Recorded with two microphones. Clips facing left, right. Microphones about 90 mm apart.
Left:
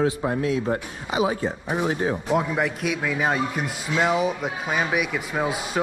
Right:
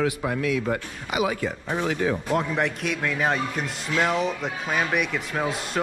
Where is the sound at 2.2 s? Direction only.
5° left (ahead or behind).